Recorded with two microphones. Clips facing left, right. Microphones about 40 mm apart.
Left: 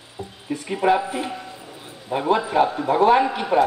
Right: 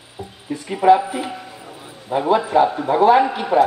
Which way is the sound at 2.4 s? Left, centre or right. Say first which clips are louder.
Right 3 dB; centre.